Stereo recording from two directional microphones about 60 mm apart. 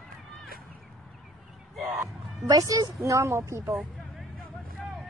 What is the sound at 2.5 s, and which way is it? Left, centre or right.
Speech, right.